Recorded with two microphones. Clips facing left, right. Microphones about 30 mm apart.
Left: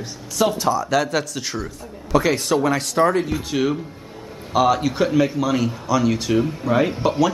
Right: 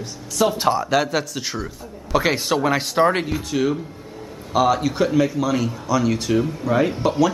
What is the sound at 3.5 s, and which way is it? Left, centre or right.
Speech, centre.